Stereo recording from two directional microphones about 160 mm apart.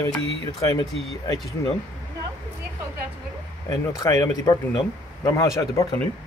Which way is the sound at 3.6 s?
20° left (ahead or behind).